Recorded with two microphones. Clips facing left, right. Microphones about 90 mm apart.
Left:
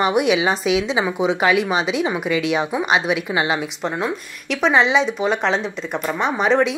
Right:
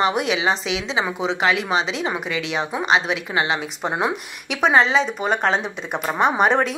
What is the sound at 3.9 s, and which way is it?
Speech, 15° right (ahead or behind).